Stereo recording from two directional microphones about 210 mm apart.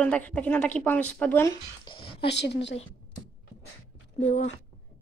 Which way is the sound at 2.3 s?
55° left (ahead or behind).